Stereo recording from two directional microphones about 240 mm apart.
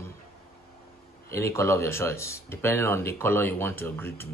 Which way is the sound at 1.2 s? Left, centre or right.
Centre.